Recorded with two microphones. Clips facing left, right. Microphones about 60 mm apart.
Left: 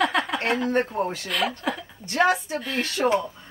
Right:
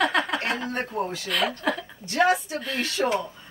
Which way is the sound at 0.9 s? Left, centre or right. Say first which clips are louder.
Left 2 dB; left.